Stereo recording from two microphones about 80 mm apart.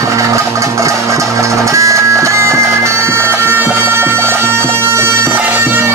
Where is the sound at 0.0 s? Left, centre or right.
Right.